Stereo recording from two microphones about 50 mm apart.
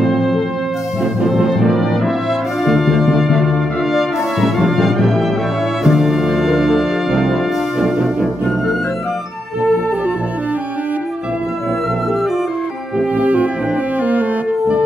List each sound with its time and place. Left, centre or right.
0.0 s music: centre
1.2 s brass instrument: centre
5.9 s music: centre
7.8 s brass instrument: centre
13.2 s brass instrument: right